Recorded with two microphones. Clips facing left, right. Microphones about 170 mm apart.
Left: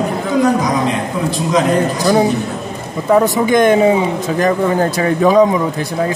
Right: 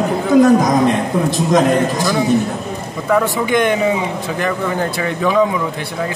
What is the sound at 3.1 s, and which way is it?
Speech, 40° left (ahead or behind).